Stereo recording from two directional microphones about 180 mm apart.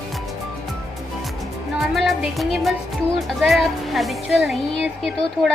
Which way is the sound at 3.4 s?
Centre (ahead or behind).